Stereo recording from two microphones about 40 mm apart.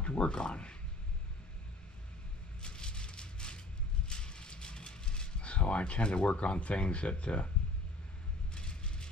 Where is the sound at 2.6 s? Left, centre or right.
Left.